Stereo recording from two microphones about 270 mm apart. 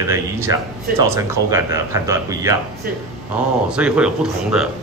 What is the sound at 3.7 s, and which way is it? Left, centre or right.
Speech, centre.